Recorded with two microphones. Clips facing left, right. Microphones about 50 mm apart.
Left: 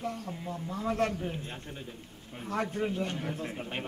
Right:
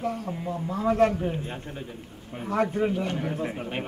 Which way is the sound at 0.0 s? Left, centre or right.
Right.